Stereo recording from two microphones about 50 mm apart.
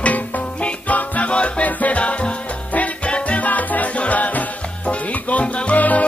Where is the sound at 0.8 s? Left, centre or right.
Left.